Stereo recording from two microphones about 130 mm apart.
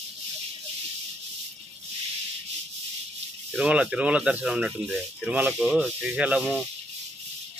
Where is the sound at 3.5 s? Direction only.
5° right (ahead or behind).